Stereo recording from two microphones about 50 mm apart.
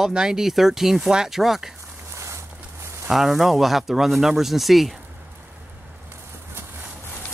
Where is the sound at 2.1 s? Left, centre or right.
Right.